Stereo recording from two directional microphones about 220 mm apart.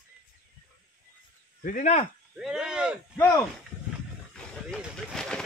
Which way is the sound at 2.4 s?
5° right (ahead or behind).